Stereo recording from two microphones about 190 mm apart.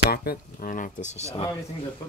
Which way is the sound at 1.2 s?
30° left (ahead or behind).